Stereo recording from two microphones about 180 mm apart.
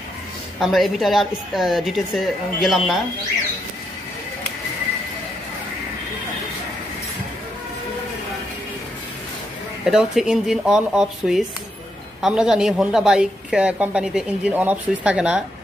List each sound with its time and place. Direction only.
0.6 s a woman's voice: centre (ahead or behind)
9.8 s a woman's voice: centre (ahead or behind)